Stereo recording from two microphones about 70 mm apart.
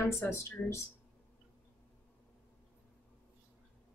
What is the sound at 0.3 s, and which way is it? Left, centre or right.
Speech, left.